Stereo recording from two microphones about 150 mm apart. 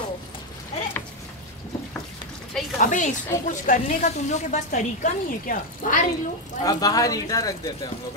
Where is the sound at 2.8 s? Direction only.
55° left (ahead or behind).